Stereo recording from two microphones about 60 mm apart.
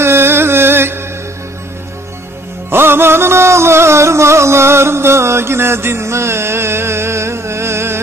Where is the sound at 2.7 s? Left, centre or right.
Right.